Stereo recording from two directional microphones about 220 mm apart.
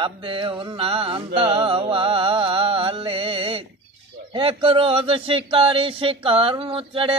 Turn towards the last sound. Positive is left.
turn(degrees=-25)  # may be behind; listen again after turning